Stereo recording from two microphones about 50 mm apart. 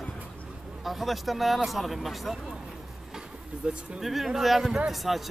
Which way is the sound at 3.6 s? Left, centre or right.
Right.